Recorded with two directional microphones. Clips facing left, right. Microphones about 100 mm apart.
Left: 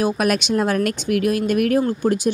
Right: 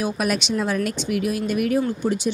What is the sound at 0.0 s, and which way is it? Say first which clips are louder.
Speech: left 4 dB; 55° left (ahead or behind).